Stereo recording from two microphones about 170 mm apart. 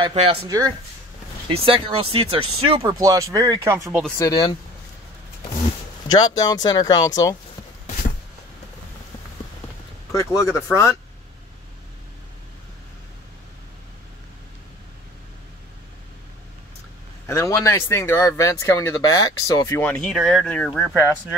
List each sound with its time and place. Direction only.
0.0 s speech: 30° right (ahead or behind)
0.5 s speech: 20° right (ahead or behind)
1.5 s speech: 35° right (ahead or behind)
2.8 s speech: 20° right (ahead or behind)
4.3 s speech: 25° left (ahead or behind)
6.0 s speech: 20° left (ahead or behind)
10.1 s speech: 20° left (ahead or behind)
17.3 s speech: 15° left (ahead or behind)
19.8 s speech: 10° left (ahead or behind)